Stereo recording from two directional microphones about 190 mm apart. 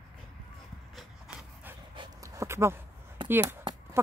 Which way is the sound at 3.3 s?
10° right (ahead or behind).